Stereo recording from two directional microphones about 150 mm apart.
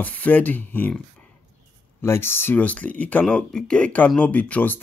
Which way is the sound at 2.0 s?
15° left (ahead or behind).